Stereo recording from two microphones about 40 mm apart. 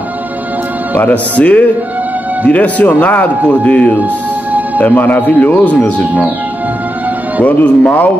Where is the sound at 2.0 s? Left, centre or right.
Right.